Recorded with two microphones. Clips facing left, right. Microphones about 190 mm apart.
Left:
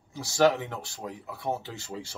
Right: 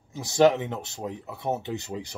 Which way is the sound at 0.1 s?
20° right (ahead or behind).